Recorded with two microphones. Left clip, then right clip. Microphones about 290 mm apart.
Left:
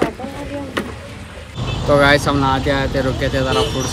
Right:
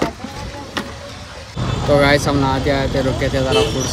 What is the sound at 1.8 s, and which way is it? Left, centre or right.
Speech, centre.